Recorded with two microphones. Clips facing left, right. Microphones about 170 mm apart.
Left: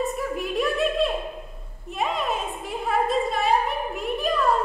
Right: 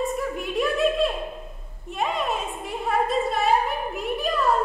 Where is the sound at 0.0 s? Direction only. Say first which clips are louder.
Even; centre (ahead or behind).